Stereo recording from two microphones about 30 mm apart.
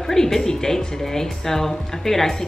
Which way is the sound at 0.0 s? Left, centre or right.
Centre.